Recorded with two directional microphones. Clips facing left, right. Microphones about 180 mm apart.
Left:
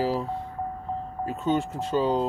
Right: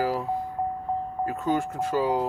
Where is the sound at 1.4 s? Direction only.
25° left (ahead or behind).